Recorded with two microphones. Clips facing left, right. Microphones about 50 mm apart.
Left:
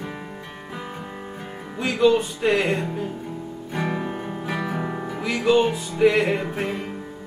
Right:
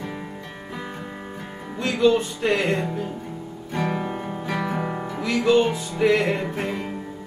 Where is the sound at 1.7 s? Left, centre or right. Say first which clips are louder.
Even; centre.